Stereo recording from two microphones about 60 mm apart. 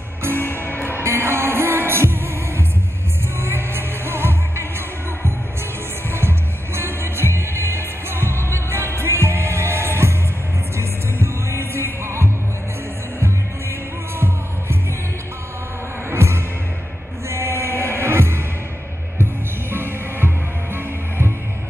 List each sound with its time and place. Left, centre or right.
0.4 s music: left
0.8 s music: right
16.1 s music: right
19.7 s music: right